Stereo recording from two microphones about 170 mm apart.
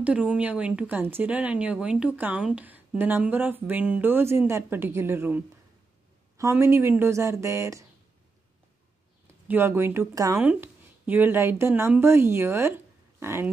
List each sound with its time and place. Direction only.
0.0 s speech: 5° right (ahead or behind)
9.5 s speech: 15° right (ahead or behind)